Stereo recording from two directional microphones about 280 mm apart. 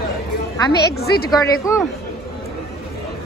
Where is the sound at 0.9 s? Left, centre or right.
Left.